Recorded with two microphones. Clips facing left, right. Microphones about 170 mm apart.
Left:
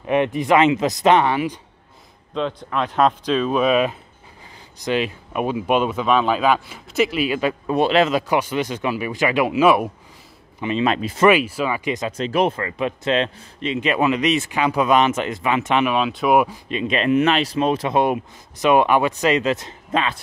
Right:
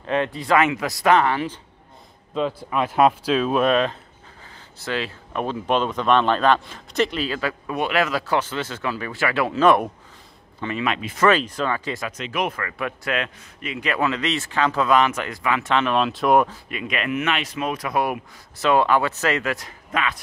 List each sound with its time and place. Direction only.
0.0 s speech: 15° left (ahead or behind)
2.3 s speech: 5° right (ahead or behind)
10.8 s speech: 35° left (ahead or behind)
11.2 s speech: 10° left (ahead or behind)
12.1 s speech: 30° left (ahead or behind)
15.9 s speech: centre (ahead or behind)
16.6 s speech: 25° left (ahead or behind)